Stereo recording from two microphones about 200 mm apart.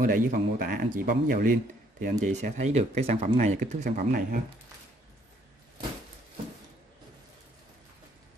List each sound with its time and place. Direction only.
0.0 s speech: 45° right (ahead or behind)